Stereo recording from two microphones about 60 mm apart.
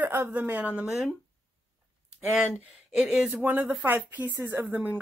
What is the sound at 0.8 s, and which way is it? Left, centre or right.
Speech, centre.